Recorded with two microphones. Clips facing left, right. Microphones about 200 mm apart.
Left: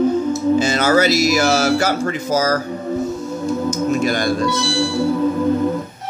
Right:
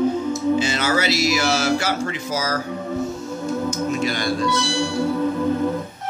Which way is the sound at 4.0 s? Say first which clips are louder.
Left 4 dB; 45° left (ahead or behind).